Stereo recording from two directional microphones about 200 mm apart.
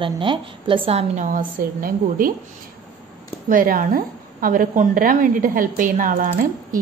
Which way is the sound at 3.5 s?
45° right (ahead or behind).